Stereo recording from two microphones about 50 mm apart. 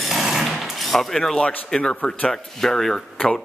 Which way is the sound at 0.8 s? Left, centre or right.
Centre.